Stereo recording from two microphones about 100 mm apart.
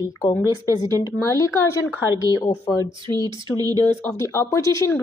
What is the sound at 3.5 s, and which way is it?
Speech, 40° right (ahead or behind).